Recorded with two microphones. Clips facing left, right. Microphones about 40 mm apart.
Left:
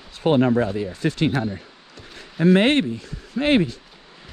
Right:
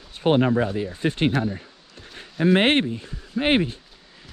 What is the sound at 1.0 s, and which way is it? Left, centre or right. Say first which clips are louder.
Speech: even; right.